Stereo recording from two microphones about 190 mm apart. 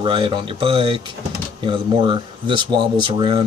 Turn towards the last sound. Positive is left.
turn(degrees=-25)  # may be behind; listen again after turning